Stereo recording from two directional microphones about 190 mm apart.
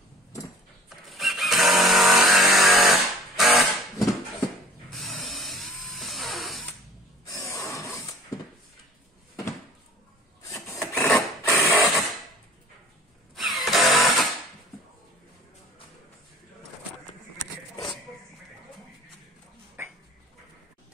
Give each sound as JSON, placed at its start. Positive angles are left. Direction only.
{"t": 0.8, "sound": "vehicle", "side_deg": 0}
{"t": 4.9, "sound": "dental drill", "side_deg": 0}
{"t": 7.2, "sound": "a sound", "side_deg": 15}
{"t": 10.5, "sound": "printer", "side_deg": 10}
{"t": 11.5, "sound": "a sound", "side_deg": 15}
{"t": 13.6, "sound": "music", "side_deg": 0}
{"t": 19.8, "sound": "dog", "side_deg": -15}